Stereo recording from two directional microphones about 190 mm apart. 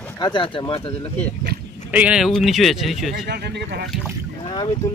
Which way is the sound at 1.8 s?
5° right (ahead or behind).